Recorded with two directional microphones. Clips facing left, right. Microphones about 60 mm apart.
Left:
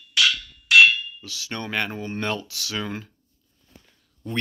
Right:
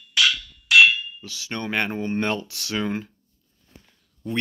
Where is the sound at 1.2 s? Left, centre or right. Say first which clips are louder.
Right 3 dB; centre; by 2.7 s right.